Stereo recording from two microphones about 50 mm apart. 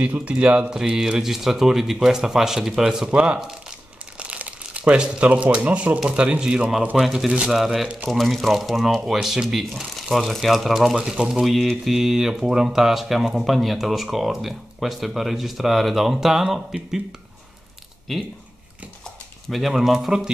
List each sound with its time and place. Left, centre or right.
0.0 s speech: right
0.7 s speech: centre
3.1 s speech: right
6.9 s speech: centre
18.1 s speech: centre
19.5 s speech: centre